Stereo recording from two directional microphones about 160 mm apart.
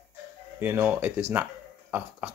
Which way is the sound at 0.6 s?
10° right (ahead or behind).